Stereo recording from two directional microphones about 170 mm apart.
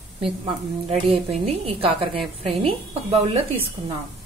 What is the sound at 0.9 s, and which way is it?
A woman's voice, 35° right (ahead or behind).